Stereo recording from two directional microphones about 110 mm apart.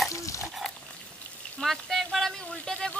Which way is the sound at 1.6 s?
Centre (ahead or behind).